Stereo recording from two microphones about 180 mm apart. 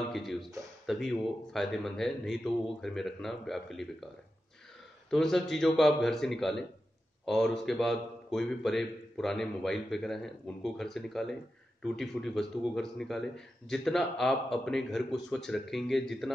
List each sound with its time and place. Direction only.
0.1 s a man's voice: centre (ahead or behind)
5.1 s a man's voice: centre (ahead or behind)